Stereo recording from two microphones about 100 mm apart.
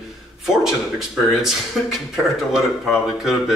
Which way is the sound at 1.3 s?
5° right (ahead or behind).